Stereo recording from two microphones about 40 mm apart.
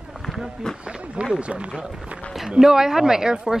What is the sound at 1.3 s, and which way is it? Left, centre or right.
Speech, right.